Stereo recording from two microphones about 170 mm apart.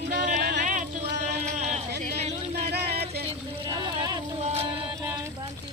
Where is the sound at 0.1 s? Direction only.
50° right (ahead or behind).